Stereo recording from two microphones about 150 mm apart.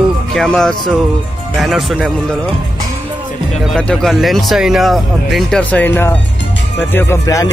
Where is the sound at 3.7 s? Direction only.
5° left (ahead or behind).